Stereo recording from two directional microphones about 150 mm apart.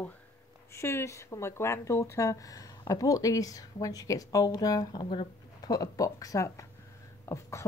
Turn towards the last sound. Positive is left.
turn(degrees=20)  # may be behind; listen again after turning